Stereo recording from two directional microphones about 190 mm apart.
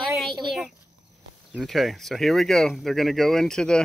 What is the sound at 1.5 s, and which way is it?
Speech, centre (ahead or behind).